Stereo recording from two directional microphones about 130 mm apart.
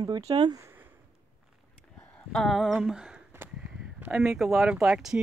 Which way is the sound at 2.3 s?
Centre (ahead or behind).